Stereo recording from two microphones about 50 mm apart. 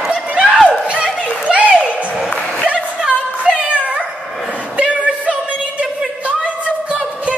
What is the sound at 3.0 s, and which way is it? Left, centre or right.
Music, right.